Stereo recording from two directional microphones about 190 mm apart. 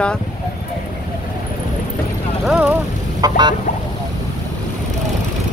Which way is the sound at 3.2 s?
20° right (ahead or behind).